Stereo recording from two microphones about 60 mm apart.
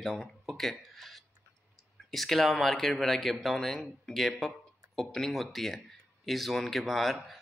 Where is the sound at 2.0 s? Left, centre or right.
Centre.